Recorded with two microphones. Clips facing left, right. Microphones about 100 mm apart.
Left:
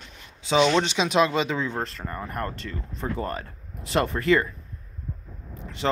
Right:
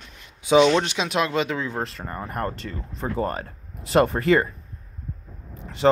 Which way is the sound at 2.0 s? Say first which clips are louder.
Right 2 dB; 15° right (ahead or behind).